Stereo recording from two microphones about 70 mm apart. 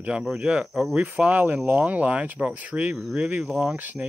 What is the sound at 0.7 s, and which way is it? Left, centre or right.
Speech, centre.